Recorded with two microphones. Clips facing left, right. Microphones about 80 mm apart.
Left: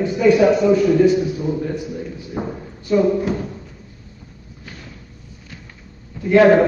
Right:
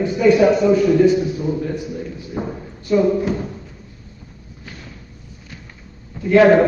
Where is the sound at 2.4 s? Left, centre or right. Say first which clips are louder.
Even; left.